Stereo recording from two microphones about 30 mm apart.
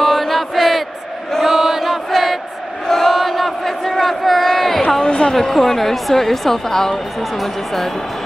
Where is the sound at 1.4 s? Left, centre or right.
Centre.